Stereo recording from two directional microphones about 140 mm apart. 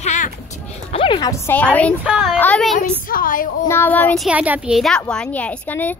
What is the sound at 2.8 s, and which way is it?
Speech, 85° left.